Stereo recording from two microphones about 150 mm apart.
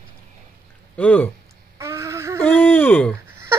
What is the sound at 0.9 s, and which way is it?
Speech, 10° left (ahead or behind).